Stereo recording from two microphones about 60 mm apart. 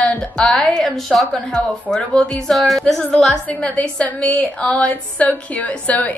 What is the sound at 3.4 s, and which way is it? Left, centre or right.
A woman's voice, left.